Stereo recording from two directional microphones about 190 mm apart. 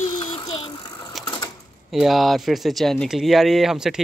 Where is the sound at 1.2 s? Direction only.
20° left (ahead or behind).